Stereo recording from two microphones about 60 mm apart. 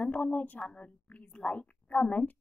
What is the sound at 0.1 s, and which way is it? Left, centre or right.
A woman's voice, left.